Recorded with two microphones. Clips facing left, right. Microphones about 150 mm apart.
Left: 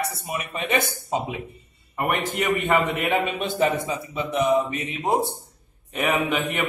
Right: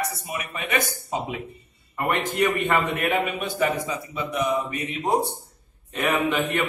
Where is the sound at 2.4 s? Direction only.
10° left (ahead or behind).